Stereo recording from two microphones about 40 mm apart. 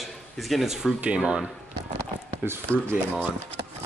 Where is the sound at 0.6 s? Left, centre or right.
Centre.